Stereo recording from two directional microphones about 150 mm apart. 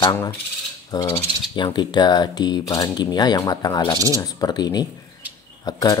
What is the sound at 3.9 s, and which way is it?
Speech, 20° right (ahead or behind).